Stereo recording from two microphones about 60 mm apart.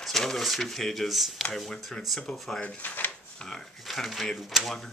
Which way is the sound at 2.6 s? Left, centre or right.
Left.